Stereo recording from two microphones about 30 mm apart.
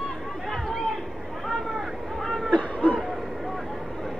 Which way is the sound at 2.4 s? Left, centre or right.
Left.